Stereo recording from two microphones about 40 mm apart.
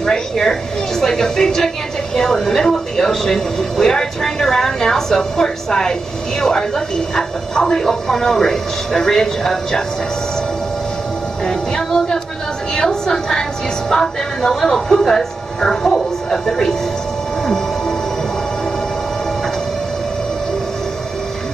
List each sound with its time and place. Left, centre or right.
0.0 s a woman's voice: centre
11.4 s a woman's voice: left